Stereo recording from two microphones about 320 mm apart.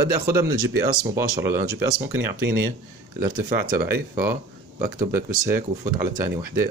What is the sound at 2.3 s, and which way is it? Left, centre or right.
Speech, right.